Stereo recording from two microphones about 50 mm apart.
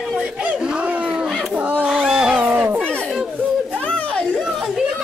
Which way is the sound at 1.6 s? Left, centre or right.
Right.